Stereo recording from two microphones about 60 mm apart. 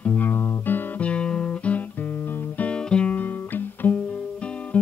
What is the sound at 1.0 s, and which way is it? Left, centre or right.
Guitar, centre.